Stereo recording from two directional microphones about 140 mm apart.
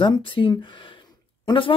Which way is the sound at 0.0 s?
35° left (ahead or behind).